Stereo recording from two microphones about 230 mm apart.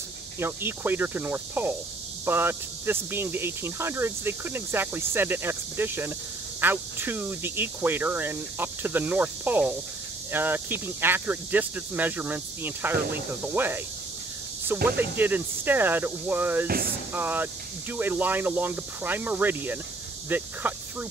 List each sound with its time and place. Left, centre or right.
0.4 s speech: centre
14.9 s speech: centre
16.6 s speech: right
17.1 s speech: centre